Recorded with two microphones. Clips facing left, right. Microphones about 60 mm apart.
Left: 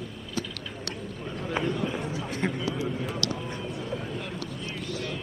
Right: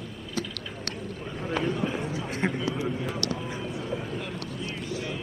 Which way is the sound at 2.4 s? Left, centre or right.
Centre.